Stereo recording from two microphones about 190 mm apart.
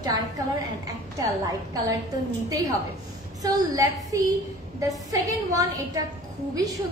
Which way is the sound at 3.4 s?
20° right (ahead or behind).